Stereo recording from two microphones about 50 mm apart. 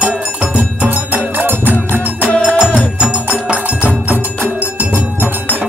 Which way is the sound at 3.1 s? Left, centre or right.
Right.